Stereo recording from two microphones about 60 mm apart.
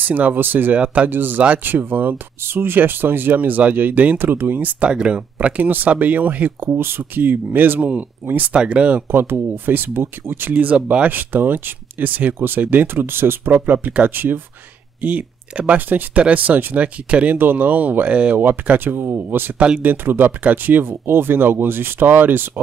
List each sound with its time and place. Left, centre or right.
0.0 s speech: right
0.7 s speech: right
1.1 s speech: right
4.8 s speech: centre
6.6 s speech: right
8.5 s speech: centre
9.1 s speech: right
10.5 s speech: right
17.4 s speech: right
18.7 s speech: right